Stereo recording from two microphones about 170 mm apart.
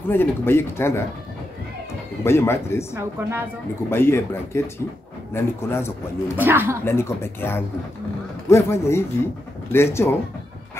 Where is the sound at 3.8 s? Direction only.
15° left (ahead or behind).